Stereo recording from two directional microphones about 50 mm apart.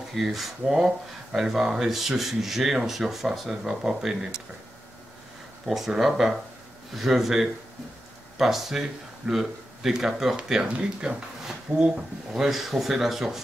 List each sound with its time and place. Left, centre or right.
0.1 s speech: centre
5.7 s speech: centre
12.4 s speech: centre